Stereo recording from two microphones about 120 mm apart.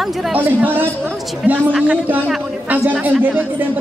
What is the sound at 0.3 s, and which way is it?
A man's voice, 15° right (ahead or behind).